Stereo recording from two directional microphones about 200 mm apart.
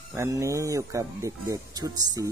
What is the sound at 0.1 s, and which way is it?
Speech, 15° right (ahead or behind).